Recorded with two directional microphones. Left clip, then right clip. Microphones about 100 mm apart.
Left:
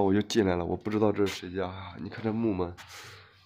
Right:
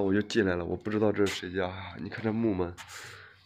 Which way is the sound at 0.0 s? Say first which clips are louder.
Left 2 dB; 35° left (ahead or behind).